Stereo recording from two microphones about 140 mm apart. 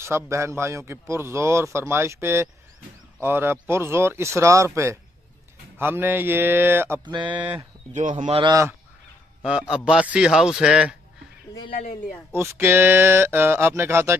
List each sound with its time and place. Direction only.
0.0 s a man's voice: 20° right (ahead or behind)
7.1 s speech: 35° right (ahead or behind)
7.3 s speech: 10° right (ahead or behind)
7.9 s speech: 60° right (ahead or behind)
8.5 s a man's voice: 20° right (ahead or behind)
9.4 s speech: 5° right (ahead or behind)
12.4 s speech: 15° right (ahead or behind)